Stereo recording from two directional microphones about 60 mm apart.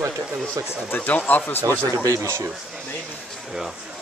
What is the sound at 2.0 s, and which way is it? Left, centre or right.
Speech, right.